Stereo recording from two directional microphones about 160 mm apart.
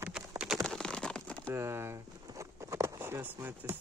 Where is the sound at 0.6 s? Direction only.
5° left (ahead or behind).